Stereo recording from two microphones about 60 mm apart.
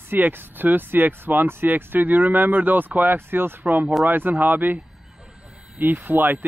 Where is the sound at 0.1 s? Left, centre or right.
Right.